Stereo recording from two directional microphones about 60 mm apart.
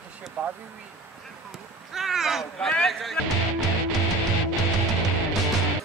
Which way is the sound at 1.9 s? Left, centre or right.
Centre.